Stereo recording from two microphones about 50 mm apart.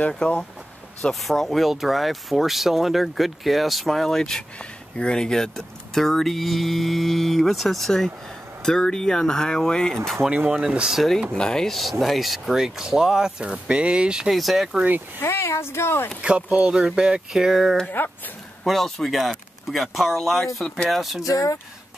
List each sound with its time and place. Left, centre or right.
0.2 s speech: centre
1.2 s speech: centre
9.9 s speech: centre
11.3 s speech: centre
14.3 s speech: centre
15.1 s speech: left
16.2 s speech: right
18.0 s speech: left
18.6 s speech: centre
21.3 s speech: left